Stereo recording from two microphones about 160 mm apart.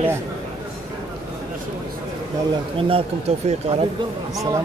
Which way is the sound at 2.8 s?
35° right (ahead or behind).